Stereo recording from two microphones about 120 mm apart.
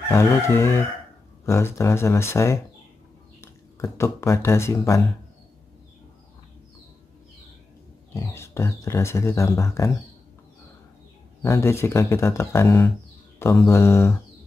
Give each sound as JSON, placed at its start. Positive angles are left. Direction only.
{"t": 0.1, "sound": "speech", "side_deg": 20}
{"t": 8.1, "sound": "speech", "side_deg": 25}
{"t": 11.4, "sound": "speech", "side_deg": 25}